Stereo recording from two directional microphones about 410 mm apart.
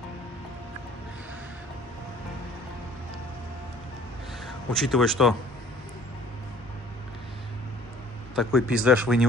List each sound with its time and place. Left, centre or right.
4.5 s speech: centre
8.4 s speech: centre